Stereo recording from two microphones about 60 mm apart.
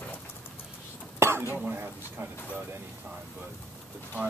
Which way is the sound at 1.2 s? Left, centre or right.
Right.